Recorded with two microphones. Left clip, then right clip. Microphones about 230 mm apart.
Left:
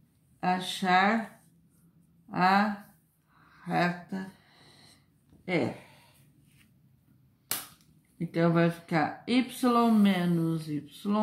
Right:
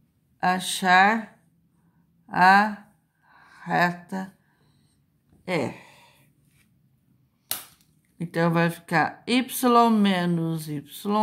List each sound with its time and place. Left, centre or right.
0.4 s speech: right
2.2 s speech: right
8.2 s speech: right